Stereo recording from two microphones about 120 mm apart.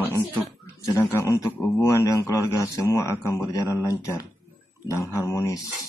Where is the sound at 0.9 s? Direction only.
25° left (ahead or behind).